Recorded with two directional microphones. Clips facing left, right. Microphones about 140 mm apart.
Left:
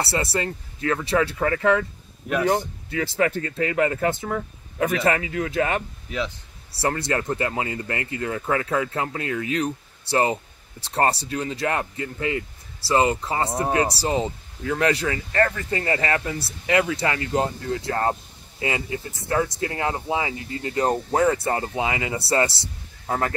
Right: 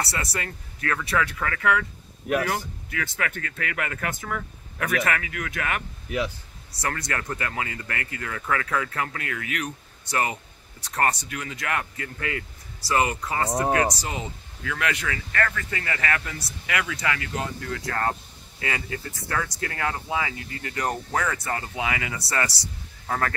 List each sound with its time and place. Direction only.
0.0 s speech: 30° left (ahead or behind)